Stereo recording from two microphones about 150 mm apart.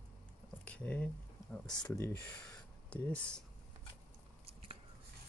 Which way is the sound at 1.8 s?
20° left (ahead or behind).